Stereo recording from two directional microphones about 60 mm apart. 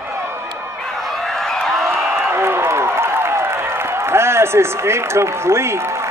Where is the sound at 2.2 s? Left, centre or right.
Right.